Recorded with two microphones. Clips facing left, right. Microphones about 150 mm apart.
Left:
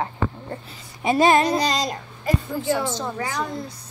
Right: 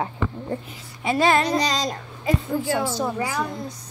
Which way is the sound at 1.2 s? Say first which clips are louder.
Left 2 dB; 15° left (ahead or behind).